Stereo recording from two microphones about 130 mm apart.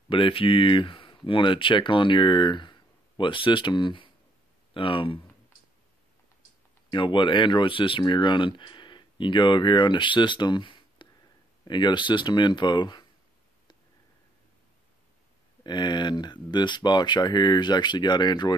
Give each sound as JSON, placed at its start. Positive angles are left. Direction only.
{"t": 0.1, "sound": "speech", "side_deg": 45}
{"t": 6.9, "sound": "speech", "side_deg": 40}
{"t": 15.6, "sound": "speech", "side_deg": 35}